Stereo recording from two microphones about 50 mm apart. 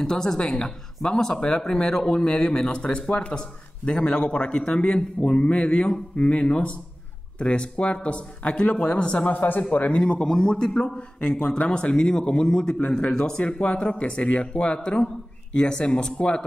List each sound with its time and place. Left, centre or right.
0.0 s a man's voice: centre
9.3 s speech: left
9.8 s a man's voice: left